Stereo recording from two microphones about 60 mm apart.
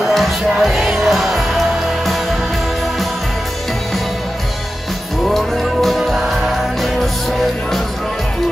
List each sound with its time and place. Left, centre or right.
0.0 s music: centre
5.2 s music: centre